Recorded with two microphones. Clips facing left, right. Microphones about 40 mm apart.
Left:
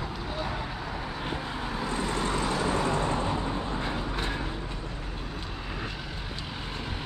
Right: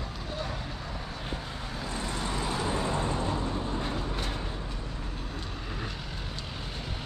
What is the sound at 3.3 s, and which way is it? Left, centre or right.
Vehicle, left.